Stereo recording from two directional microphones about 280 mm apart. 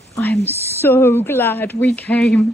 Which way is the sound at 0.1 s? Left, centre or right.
Centre.